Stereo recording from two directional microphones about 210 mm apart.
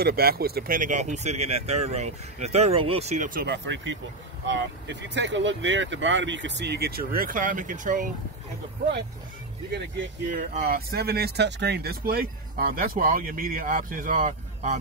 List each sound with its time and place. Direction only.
0.0 s speech: 45° right (ahead or behind)
10.3 s speech: 45° right (ahead or behind)